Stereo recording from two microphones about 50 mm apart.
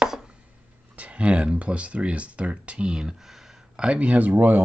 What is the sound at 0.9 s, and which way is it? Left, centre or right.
Speech, right.